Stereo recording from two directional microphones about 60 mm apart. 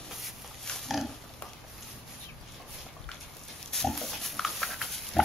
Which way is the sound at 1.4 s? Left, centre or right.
Centre.